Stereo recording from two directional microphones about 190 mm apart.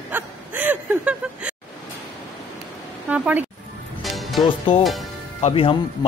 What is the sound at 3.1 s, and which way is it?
Speech, 10° right (ahead or behind).